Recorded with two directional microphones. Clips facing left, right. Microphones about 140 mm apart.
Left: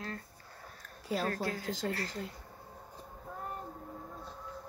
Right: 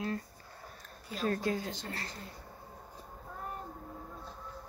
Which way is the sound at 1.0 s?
80° left.